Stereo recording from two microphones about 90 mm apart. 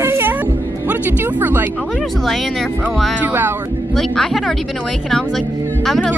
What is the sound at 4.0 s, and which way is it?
Speech, centre (ahead or behind).